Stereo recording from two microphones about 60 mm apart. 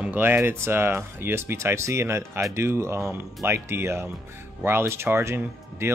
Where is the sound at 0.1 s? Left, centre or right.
Right.